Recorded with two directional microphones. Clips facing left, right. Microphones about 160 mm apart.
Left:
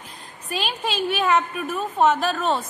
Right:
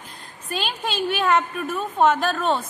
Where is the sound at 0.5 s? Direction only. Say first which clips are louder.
Left 1 dB; 5° left (ahead or behind).